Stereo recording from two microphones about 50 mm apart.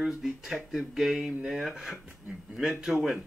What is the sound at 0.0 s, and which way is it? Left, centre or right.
Speech, centre.